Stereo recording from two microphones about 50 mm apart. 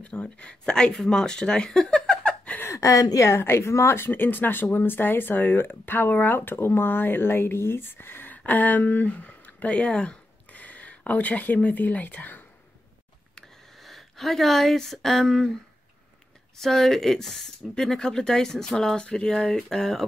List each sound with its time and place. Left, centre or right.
0.0 s speech: left
2.6 s a woman's voice: left
13.7 s speech: centre
16.5 s speech: centre